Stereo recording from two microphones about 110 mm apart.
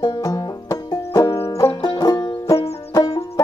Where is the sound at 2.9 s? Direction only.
30° left (ahead or behind).